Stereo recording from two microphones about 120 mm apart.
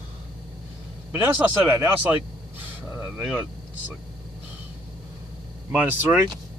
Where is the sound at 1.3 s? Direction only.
15° right (ahead or behind).